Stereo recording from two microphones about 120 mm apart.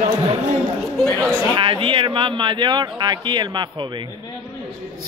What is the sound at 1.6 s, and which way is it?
Speech, 45° right (ahead or behind).